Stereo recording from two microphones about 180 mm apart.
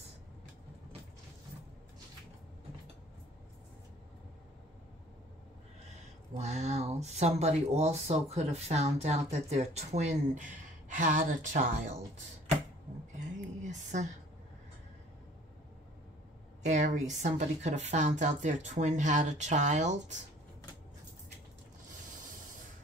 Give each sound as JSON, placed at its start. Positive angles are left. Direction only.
{"t": 6.3, "sound": "speech", "side_deg": -40}
{"t": 13.6, "sound": "a sound", "side_deg": -40}
{"t": 16.6, "sound": "speech", "side_deg": -40}